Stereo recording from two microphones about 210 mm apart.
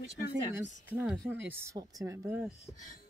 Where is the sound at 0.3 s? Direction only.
10° right (ahead or behind).